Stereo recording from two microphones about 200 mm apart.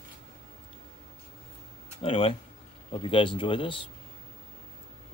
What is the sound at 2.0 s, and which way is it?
Speech, 25° left (ahead or behind).